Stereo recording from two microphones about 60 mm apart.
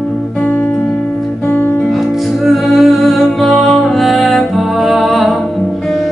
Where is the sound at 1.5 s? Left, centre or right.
Left.